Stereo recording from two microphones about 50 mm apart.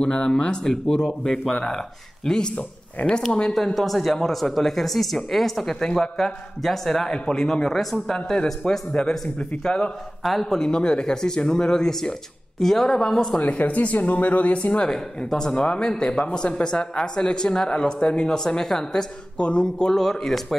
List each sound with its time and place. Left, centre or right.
0.0 s speech: centre
3.5 s speech: centre
13.4 s speech: left
14.9 s speech: centre